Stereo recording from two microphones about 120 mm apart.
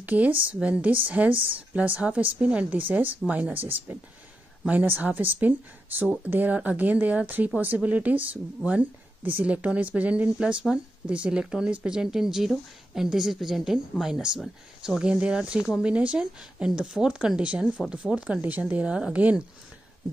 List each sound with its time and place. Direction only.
0.0 s speech: 15° right (ahead or behind)